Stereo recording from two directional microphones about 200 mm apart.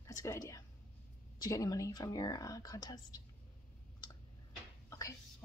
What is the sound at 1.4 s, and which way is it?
Speech, 15° left (ahead or behind).